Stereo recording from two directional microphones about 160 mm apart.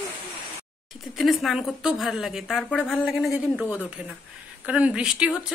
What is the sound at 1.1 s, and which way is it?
A woman's voice, centre (ahead or behind).